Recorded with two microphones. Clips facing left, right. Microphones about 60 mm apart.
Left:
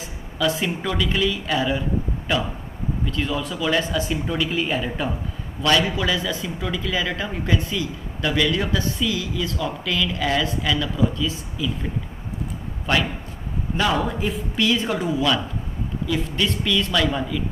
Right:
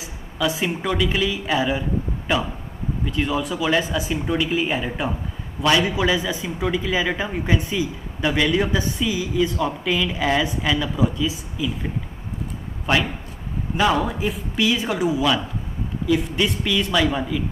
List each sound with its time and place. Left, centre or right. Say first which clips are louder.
0.4 s a man's voice: even; centre
13.9 s a man's voice: right 1 dB; centre